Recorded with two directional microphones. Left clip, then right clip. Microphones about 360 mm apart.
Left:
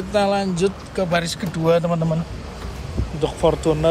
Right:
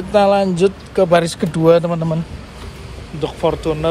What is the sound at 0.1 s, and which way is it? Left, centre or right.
Speech, centre.